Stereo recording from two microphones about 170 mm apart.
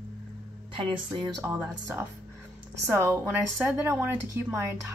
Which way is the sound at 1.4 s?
10° right (ahead or behind).